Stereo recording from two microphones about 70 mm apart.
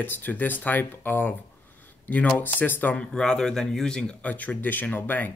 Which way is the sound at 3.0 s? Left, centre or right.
Centre.